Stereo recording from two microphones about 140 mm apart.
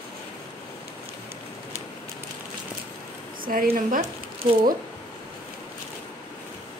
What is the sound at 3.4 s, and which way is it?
Speech, 85° right.